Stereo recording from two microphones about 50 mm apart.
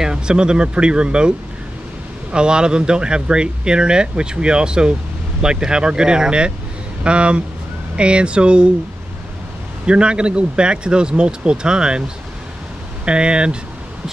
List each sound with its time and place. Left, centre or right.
0.0 s speech: centre
2.3 s speech: centre
9.8 s speech: centre
13.0 s speech: centre